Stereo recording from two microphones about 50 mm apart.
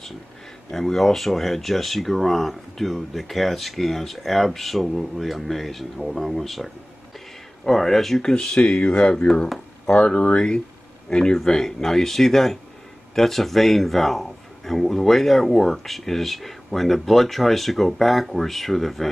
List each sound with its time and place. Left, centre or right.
0.7 s speech: centre